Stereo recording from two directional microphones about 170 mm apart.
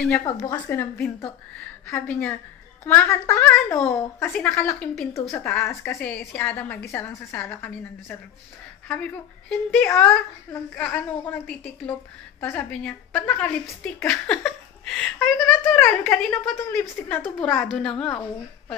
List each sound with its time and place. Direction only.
0.1 s a woman's voice: 20° left (ahead or behind)